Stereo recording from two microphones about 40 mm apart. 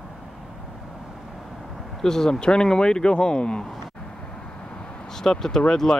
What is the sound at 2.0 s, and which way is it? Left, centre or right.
Speech, centre.